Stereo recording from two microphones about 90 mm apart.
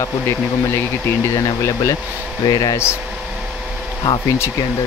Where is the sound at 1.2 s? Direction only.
35° left (ahead or behind).